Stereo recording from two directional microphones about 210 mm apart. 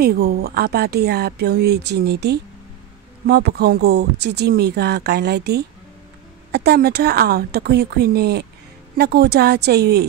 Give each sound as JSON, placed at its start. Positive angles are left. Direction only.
{"t": 0.0, "sound": "speech", "side_deg": -50}